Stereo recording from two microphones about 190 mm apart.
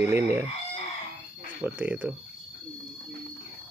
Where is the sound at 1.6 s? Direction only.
10° right (ahead or behind).